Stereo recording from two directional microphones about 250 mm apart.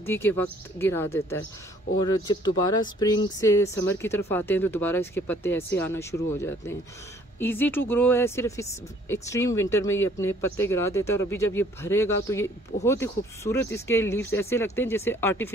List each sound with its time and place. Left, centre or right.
0.0 s speech: centre